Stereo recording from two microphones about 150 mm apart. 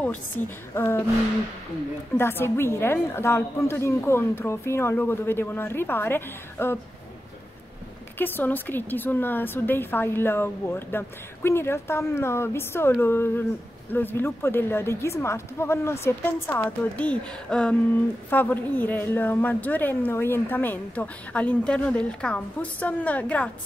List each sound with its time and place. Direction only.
0.7 s a woman's voice: 15° left (ahead or behind)
2.1 s a woman's voice: 15° left (ahead or behind)
8.2 s a woman's voice: 15° left (ahead or behind)